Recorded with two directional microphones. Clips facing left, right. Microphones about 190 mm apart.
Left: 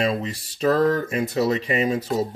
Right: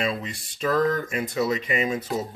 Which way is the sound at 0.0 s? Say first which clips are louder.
Left 4 dB; 40° left (ahead or behind).